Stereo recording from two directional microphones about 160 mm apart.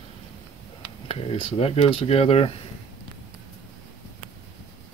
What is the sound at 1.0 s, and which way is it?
Speech, 35° left (ahead or behind).